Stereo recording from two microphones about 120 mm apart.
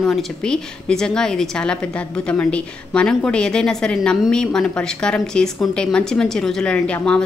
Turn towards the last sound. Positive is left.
turn(degrees=10)  # may be behind; listen again after turning